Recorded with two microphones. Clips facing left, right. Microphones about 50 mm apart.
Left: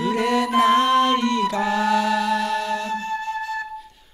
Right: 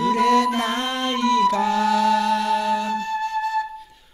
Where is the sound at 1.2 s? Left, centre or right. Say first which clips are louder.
Right 3 dB; centre.